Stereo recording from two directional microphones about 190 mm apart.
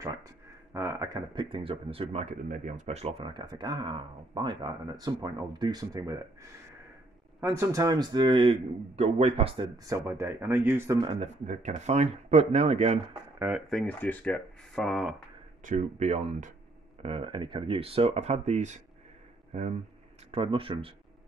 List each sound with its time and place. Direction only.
0.7 s speech: 15° right (ahead or behind)
7.3 s speech: 15° right (ahead or behind); by 9.7 s 30° right (ahead or behind)
9.8 s speech: 15° right (ahead or behind)
11.1 s speech: 40° right (ahead or behind)
13.7 s speech: 5° left (ahead or behind)
15.6 s speech: 35° right (ahead or behind)